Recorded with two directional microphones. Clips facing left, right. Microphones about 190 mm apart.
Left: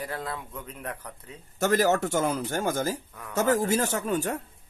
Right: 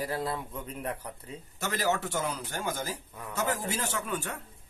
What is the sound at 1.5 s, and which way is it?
Speech, 45° left (ahead or behind).